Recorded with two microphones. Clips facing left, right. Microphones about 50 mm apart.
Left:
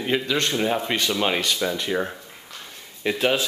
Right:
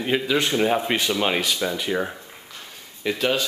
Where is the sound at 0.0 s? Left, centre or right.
Centre.